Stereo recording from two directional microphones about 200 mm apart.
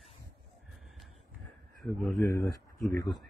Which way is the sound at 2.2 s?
15° left (ahead or behind).